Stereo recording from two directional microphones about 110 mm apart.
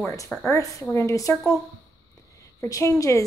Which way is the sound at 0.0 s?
30° left (ahead or behind).